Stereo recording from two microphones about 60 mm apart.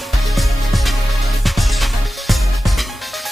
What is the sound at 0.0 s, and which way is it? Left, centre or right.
Music, centre.